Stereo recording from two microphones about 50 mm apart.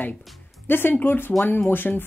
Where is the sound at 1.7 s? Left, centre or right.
Left.